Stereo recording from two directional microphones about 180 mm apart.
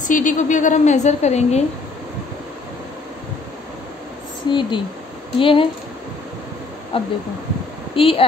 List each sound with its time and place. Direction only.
0.0 s a woman's voice: 45° left (ahead or behind)
4.5 s speech: 25° left (ahead or behind)
6.9 s speech: 30° left (ahead or behind)